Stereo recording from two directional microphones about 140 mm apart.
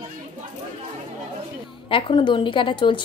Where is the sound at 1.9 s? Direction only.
40° left (ahead or behind).